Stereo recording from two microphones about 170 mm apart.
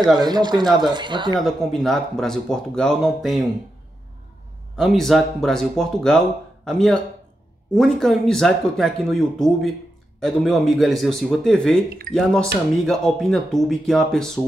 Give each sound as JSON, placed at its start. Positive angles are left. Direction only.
{"t": 0.1, "sound": "speech", "side_deg": -25}
{"t": 1.4, "sound": "speech", "side_deg": 0}
{"t": 4.7, "sound": "speech", "side_deg": 0}